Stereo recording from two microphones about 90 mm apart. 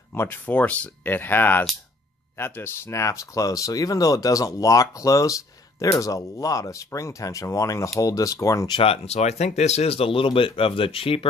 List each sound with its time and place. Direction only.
0.1 s speech: 25° left (ahead or behind)
2.9 s speech: 35° left (ahead or behind)
8.6 s speech: 80° left
9.8 s speech: 90° left